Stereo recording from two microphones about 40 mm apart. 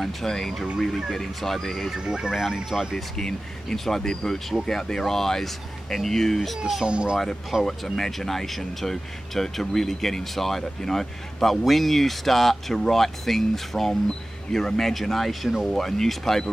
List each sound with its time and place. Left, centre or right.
0.0 s speech: centre
2.0 s speech: centre
2.3 s speech: centre
3.2 s speech: centre
6.8 s speech: right
7.6 s speech: centre